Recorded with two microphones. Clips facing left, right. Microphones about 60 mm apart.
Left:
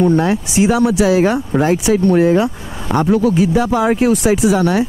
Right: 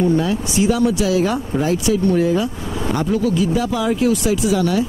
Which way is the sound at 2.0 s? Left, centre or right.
Left.